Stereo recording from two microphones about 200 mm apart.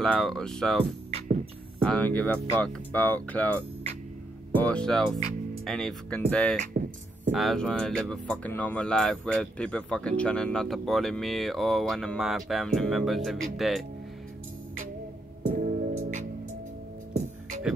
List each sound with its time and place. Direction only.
0.0 s speech: centre (ahead or behind)
1.9 s speech: 5° left (ahead or behind)
4.6 s speech: 5° left (ahead or behind)
15.5 s music: 40° right (ahead or behind)